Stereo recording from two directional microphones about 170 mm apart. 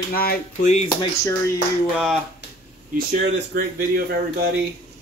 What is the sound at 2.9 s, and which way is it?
Speech, 60° right (ahead or behind).